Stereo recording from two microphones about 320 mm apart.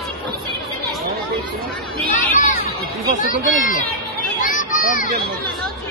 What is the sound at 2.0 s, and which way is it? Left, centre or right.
Speech, left.